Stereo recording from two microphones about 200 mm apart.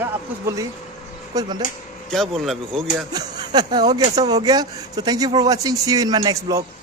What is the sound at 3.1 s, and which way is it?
Speech, 20° right (ahead or behind).